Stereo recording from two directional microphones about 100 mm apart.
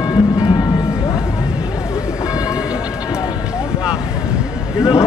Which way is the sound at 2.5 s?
10° right (ahead or behind).